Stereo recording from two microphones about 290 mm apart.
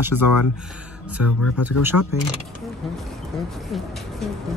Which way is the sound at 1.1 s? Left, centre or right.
Left.